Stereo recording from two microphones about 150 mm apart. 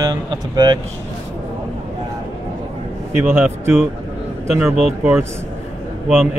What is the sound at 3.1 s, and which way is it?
Speech, 15° right (ahead or behind).